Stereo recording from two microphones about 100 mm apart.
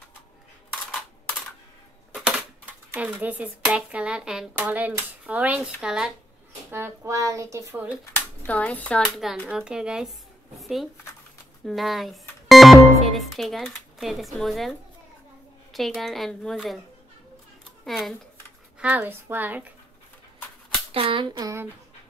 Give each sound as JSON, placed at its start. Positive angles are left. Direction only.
{"t": 2.1, "sound": "coin", "side_deg": -10}
{"t": 3.6, "sound": "a woman's voice", "side_deg": -10}
{"t": 6.7, "sound": "speech", "side_deg": -25}
{"t": 8.0, "sound": "a child's voice", "side_deg": 20}
{"t": 9.1, "sound": "a woman's voice", "side_deg": 0}
{"t": 15.7, "sound": "a woman's voice", "side_deg": 0}
{"t": 17.8, "sound": "a woman's voice", "side_deg": 0}
{"t": 18.8, "sound": "a woman's voice", "side_deg": -15}
{"t": 20.9, "sound": "a sound", "side_deg": -65}
{"t": 21.4, "sound": "speech", "side_deg": -35}